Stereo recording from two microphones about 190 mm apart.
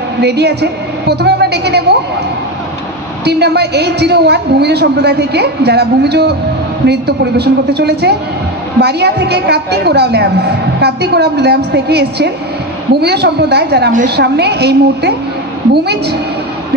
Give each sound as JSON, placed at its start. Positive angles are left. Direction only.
{"t": 0.2, "sound": "a woman's voice", "side_deg": -60}
{"t": 3.3, "sound": "a woman's voice", "side_deg": -60}